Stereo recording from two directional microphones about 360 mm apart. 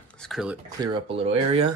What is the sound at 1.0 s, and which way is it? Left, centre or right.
Speech, centre.